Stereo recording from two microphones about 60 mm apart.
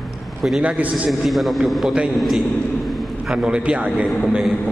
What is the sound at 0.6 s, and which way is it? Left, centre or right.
Speech, right.